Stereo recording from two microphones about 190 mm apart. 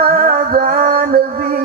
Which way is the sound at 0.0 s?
50° right (ahead or behind).